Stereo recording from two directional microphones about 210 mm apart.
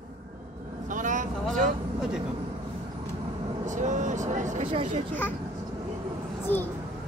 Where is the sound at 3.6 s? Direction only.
35° right (ahead or behind).